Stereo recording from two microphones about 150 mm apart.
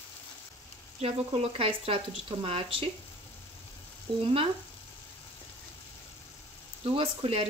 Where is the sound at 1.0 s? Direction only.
40° right (ahead or behind).